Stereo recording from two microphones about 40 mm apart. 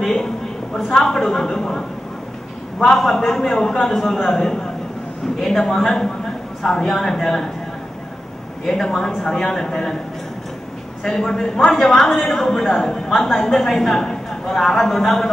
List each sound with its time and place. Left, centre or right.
0.0 s a woman's voice: centre
8.6 s a woman's voice: centre
11.1 s a woman's voice: centre